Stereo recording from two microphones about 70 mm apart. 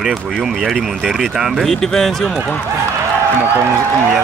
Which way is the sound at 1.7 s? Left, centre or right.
Centre.